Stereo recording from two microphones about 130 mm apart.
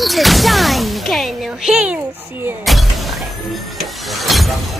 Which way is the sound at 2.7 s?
Centre (ahead or behind).